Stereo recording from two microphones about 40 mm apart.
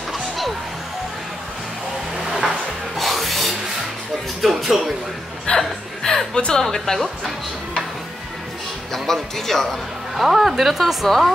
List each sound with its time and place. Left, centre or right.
2.1 s vehicle: centre
3.0 s rub: centre
4.4 s speech: centre
5.5 s hiccup: left
6.0 s music: centre
6.6 s speech: centre
8.9 s speech: centre
10.2 s speech: centre
11.1 s speech: centre